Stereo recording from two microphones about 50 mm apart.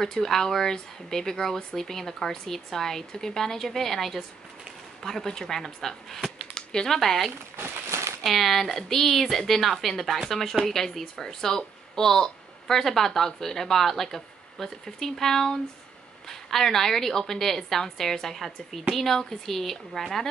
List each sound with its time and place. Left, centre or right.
0.0 s a woman's voice: centre
7.9 s a sound: right
8.2 s a woman's voice: centre